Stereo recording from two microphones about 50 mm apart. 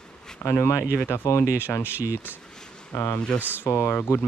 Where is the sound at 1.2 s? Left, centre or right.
Left.